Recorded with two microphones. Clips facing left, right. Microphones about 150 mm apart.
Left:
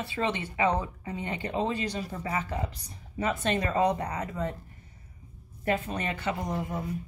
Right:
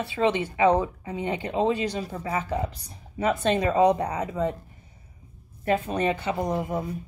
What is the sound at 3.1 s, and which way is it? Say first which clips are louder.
Speech: right 5 dB; 15° right (ahead or behind).